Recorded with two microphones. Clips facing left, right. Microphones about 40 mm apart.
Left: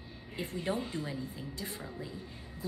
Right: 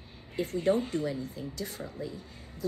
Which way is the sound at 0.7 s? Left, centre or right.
Right.